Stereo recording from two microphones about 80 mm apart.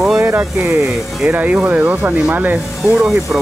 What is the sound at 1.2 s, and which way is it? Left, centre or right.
Speech, centre.